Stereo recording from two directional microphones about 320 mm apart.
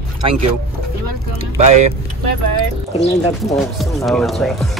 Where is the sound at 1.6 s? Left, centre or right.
Right.